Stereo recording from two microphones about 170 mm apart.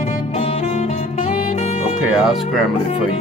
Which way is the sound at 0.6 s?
45° left (ahead or behind).